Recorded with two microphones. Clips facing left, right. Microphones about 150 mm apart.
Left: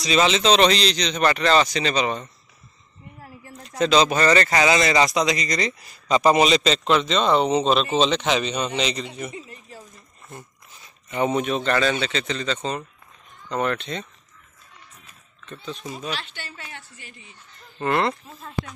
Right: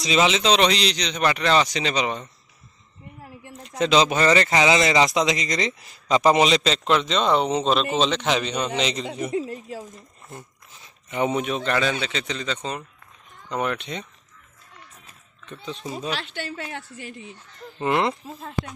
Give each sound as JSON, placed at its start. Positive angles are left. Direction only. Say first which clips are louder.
{"t": 0.0, "sound": "speech", "louder": "left 1 dB", "side_deg": -15}
{"t": 3.4, "sound": "speech", "louder": "left 1 dB", "side_deg": -20}
{"t": 6.5, "sound": "a man's voice", "louder": "left 1 dB", "side_deg": 10}
{"t": 6.9, "sound": "a man's voice", "louder": "left 1 dB", "side_deg": -10}
{"t": 9.3, "sound": "speech", "louder": "right 12 dB", "side_deg": -90}
{"t": 9.8, "sound": "speech", "louder": "right 7 dB", "side_deg": -15}
{"t": 15.4, "sound": "speech", "louder": "even", "side_deg": -15}
{"t": 17.7, "sound": "speech", "louder": "even", "side_deg": -15}